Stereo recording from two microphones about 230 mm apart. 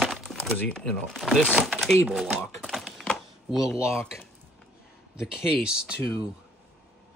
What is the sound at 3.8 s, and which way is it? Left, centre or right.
Speech, centre.